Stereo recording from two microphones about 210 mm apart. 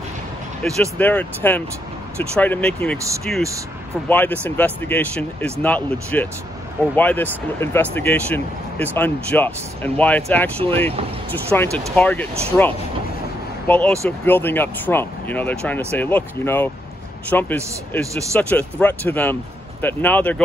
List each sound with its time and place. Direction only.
0.6 s speech: 5° left (ahead or behind)
10.6 s speech: 25° right (ahead or behind)
11.5 s speech: 5° left (ahead or behind)